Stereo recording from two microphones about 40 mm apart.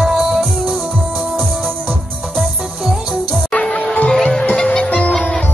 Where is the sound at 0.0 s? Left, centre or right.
Centre.